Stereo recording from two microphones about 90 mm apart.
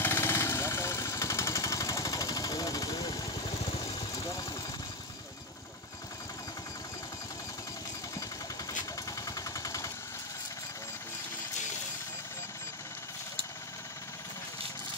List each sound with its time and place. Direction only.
0.0 s vehicle: 30° left (ahead or behind); by 3.4 s 45° left (ahead or behind)
3.4 s vehicle: 60° left (ahead or behind)
4.1 s vehicle: 40° left (ahead or behind)
9.2 s gunshot: 40° left (ahead or behind)